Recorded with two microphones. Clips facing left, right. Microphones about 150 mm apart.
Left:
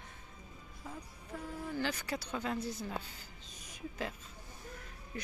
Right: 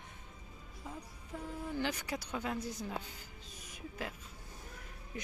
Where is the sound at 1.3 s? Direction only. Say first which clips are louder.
Even; 20° right (ahead or behind).